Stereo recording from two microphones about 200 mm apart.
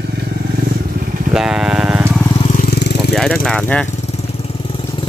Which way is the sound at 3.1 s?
5° left (ahead or behind).